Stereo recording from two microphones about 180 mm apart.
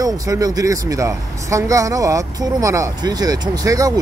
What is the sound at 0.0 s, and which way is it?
Speech, 20° right (ahead or behind).